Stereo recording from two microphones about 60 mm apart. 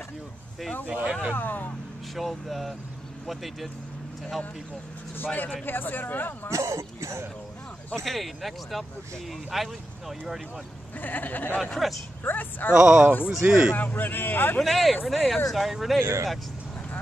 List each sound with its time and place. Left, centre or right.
0.8 s speech: centre
1.3 s speech: left
2.1 s speech: centre
5.1 s speech: left
6.5 s speech: right
7.9 s speech: centre
11.0 s speech: left
11.5 s speech: centre
12.2 s speech: left
12.7 s speech: centre
13.7 s speech: left
14.6 s speech: centre
16.0 s speech: right